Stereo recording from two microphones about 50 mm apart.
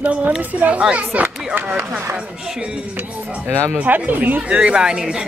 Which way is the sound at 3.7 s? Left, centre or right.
Right.